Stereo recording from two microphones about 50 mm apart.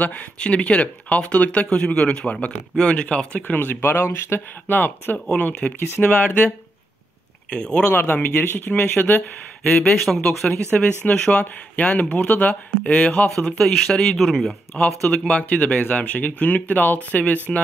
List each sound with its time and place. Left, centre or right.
0.4 s speech: left
3.5 s speech: left
4.7 s speech: left
7.5 s speech: centre
7.9 s speech: left
9.7 s speech: left
10.0 s speech: centre
10.7 s speech: left
12.8 s speech: left
13.6 s speech: centre
14.1 s speech: centre
14.8 s speech: left